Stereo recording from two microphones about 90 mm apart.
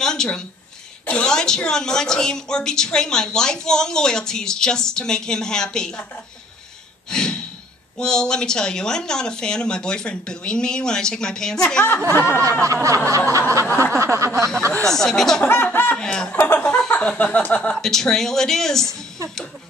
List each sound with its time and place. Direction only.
0.0 s a sound: 5° left (ahead or behind)
1.0 s a woman's voice: 10° left (ahead or behind)
7.1 s breathing: 5° left (ahead or behind)
8.0 s a woman's voice: 10° left (ahead or behind)
12.2 s a sound: 30° right (ahead or behind)
14.9 s speech: 5° left (ahead or behind)
15.4 s speech: 25° left (ahead or behind)
16.0 s a woman's voice: 10° left (ahead or behind)
16.3 s speech: 25° left (ahead or behind)
16.6 s a sound: 10° left (ahead or behind)
16.9 s a woman's voice: 15° left (ahead or behind)
17.7 s speech: 5° left (ahead or behind)